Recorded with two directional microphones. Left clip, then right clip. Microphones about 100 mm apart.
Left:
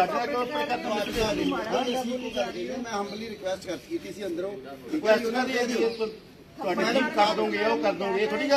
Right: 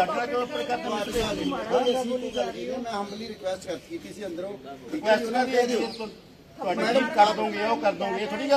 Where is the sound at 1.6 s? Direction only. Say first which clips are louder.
Right 3 dB; 10° left (ahead or behind).